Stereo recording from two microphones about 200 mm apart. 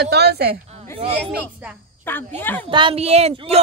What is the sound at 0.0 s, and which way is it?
Speech, 55° right (ahead or behind).